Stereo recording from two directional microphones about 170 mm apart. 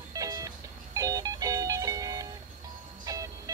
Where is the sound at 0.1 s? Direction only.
20° right (ahead or behind).